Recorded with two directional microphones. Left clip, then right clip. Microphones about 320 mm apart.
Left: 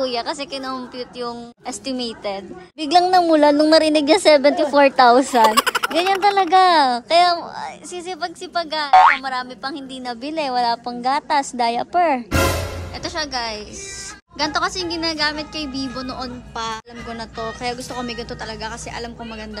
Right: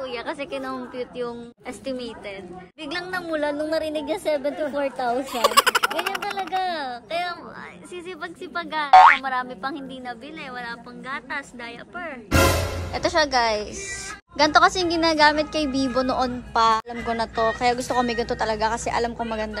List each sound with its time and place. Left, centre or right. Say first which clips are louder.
0.0 s a woman's voice: left 7 dB; centre; by 5.0 s left
5.4 s speech: left 3 dB; centre
6.5 s a child's voice: left 14 dB; left
7.9 s a woman's voice: left 5 dB; centre
12.3 s a woman's voice: even; centre